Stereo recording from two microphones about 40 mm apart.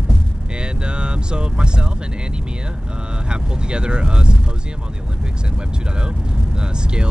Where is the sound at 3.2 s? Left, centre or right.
Right.